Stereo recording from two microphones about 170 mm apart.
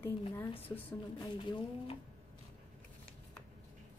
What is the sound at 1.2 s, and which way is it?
Speech, 30° left (ahead or behind).